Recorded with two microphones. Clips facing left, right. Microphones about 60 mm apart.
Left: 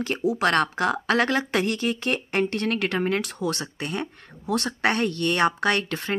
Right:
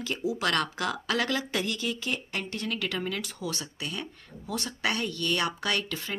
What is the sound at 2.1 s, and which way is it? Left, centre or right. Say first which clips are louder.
Speech: left 9 dB; left.